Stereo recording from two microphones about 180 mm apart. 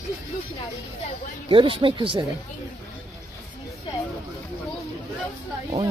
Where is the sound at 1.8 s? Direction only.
30° right (ahead or behind).